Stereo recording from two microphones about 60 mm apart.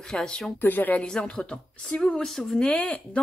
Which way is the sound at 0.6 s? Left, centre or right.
Left.